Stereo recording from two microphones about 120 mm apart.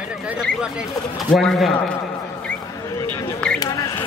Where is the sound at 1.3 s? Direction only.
Centre (ahead or behind).